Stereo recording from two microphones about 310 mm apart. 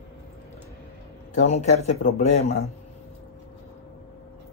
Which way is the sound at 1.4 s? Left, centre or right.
Left.